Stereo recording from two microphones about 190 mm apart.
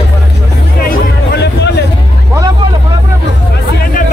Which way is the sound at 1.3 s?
60° left (ahead or behind).